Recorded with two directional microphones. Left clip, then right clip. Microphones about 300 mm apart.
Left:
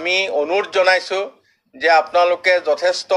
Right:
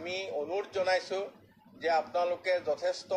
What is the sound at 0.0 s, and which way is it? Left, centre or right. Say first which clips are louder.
A man's voice: left 17 dB; left.